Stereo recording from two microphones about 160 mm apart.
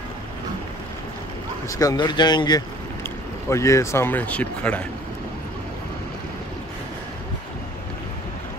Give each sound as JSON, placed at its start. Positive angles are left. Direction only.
{"t": 1.7, "sound": "speech", "side_deg": 20}